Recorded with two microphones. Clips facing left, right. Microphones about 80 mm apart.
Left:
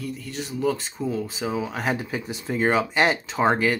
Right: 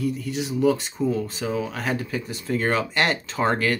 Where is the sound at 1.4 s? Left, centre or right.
Centre.